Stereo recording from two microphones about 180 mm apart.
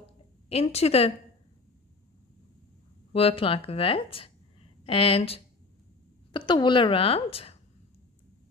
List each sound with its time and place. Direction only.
0.5 s speech: 35° left (ahead or behind)
3.1 s a woman's voice: 30° left (ahead or behind)